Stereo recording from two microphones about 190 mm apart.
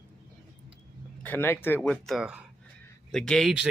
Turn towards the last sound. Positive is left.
turn(degrees=-5)  # may be behind; listen again after turning